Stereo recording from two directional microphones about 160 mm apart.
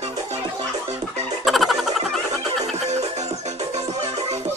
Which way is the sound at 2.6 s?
45° right (ahead or behind).